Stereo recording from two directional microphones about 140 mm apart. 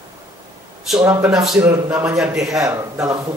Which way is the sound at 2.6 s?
20° right (ahead or behind).